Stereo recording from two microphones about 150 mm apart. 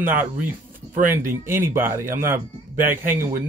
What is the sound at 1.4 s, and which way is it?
Speech, 15° right (ahead or behind).